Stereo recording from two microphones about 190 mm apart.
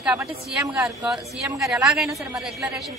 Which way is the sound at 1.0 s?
15° right (ahead or behind).